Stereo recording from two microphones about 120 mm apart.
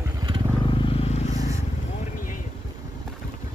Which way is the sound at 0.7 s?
45° left (ahead or behind).